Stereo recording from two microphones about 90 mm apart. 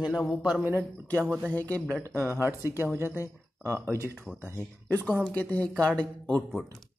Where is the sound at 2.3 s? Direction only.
30° right (ahead or behind).